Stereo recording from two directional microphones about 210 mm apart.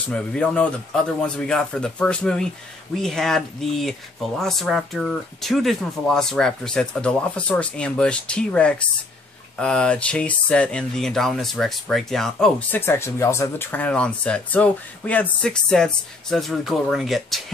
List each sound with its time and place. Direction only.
0.1 s speech: 5° left (ahead or behind)